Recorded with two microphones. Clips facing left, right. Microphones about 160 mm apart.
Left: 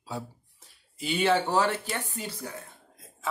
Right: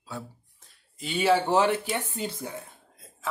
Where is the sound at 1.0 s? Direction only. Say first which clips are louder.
Right 1 dB; 5° right (ahead or behind); by 2.7 s 20° right (ahead or behind).